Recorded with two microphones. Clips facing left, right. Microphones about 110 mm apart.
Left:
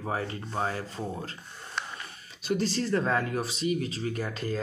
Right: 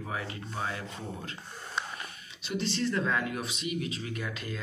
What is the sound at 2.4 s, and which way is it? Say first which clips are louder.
Speech: left 3 dB; 40° left (ahead or behind).